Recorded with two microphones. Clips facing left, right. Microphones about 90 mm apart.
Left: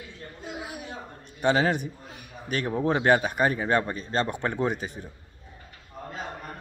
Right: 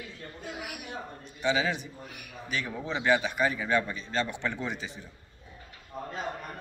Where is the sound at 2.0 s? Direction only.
30° left (ahead or behind).